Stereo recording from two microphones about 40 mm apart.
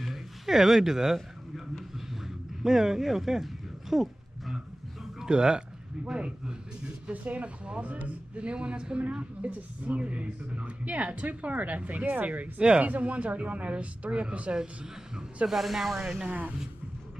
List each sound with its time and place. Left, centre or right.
0.0 s a sound: centre
2.6 s speech: centre
3.9 s music: centre
5.2 s speech: centre
7.2 s a woman's voice: right
12.5 s speech: right
12.8 s a woman's voice: right
15.4 s speech: centre
16.0 s speech: centre
16.3 s a woman's voice: right